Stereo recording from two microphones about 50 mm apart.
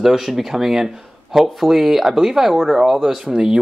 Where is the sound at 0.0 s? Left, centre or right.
Centre.